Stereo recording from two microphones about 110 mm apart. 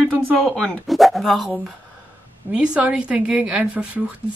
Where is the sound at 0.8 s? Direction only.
Centre (ahead or behind).